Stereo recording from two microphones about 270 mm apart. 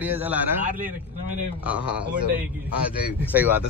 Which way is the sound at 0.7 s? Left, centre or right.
Right.